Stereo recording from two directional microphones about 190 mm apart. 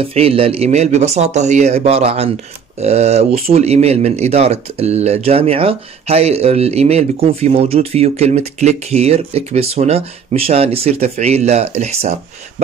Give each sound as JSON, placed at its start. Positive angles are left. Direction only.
{"t": 0.0, "sound": "speech", "side_deg": -30}